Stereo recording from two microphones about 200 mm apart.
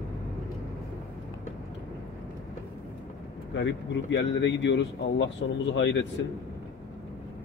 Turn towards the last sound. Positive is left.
turn(degrees=65)  # may be behind; listen again after turning